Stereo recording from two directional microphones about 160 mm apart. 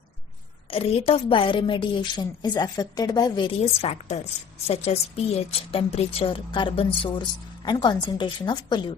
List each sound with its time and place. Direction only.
0.7 s a woman's voice: 35° left (ahead or behind)